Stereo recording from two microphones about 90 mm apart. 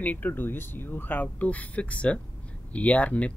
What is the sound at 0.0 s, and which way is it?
Speech, 20° left (ahead or behind).